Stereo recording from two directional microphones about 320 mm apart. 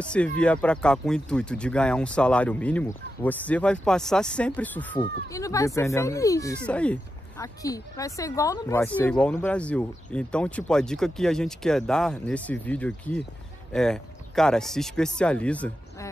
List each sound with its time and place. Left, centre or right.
0.0 s speech: centre